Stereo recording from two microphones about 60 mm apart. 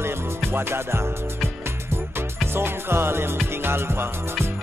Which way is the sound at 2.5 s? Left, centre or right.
Right.